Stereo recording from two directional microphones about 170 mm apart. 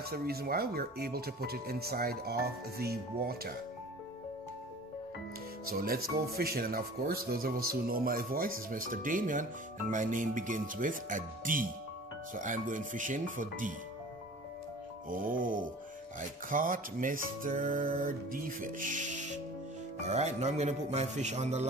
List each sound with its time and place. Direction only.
0.0 s speech: 65° right (ahead or behind)
5.7 s speech: 60° right (ahead or behind)
12.4 s music: 50° right (ahead or behind)
15.0 s music: 55° right (ahead or behind)